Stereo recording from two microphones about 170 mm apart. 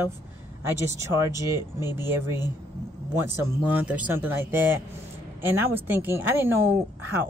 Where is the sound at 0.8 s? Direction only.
15° right (ahead or behind).